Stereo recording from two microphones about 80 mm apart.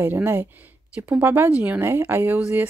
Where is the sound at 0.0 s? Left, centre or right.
Right.